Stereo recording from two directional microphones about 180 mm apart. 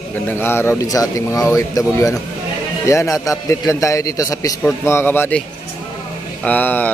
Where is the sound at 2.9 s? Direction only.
15° left (ahead or behind).